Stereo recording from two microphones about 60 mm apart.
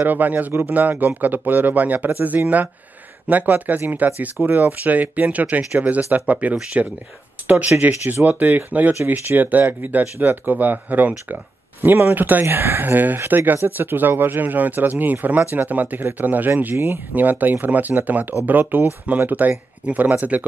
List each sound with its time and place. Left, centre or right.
0.0 s speech: right
16.7 s speech: right
17.1 s speech: right